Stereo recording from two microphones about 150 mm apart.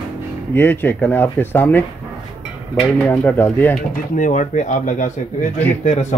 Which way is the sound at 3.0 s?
10° left (ahead or behind).